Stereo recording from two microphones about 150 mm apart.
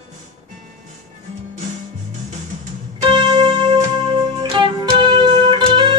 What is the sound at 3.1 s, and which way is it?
Music, 30° right (ahead or behind).